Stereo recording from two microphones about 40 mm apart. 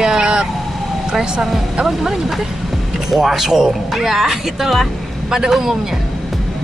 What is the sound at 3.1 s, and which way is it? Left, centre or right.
A man's voice, centre.